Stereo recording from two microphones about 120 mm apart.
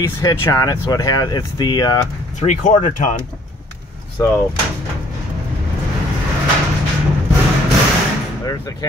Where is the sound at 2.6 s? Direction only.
90° left.